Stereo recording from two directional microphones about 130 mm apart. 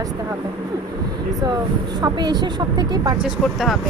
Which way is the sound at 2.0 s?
35° right (ahead or behind).